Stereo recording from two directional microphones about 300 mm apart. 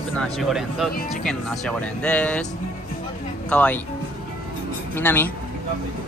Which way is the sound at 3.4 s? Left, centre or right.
Centre.